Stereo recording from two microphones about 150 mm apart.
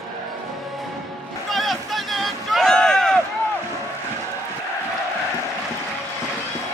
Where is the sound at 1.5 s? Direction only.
Centre (ahead or behind).